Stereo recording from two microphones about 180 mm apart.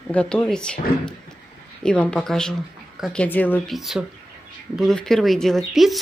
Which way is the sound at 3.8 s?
Centre (ahead or behind).